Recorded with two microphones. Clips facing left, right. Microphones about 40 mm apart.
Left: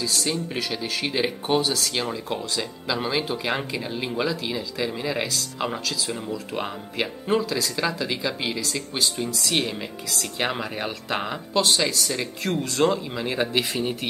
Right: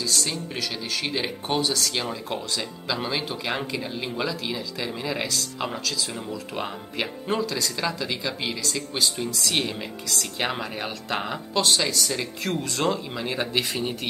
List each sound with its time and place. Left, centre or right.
0.0 s speech: centre